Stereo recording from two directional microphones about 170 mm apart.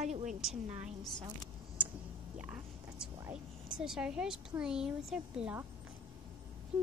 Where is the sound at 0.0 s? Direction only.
45° right (ahead or behind).